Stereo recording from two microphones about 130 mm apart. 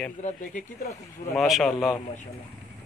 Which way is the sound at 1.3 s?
Centre (ahead or behind).